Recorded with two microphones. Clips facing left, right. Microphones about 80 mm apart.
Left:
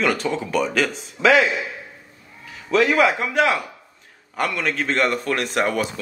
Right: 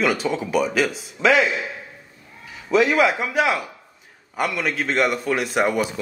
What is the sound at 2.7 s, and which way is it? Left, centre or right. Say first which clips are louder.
Speech: even; centre.